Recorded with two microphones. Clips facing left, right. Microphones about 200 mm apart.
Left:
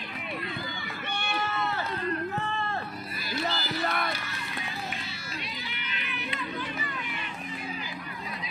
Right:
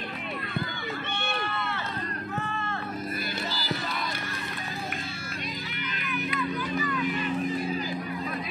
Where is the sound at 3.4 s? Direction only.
60° left (ahead or behind).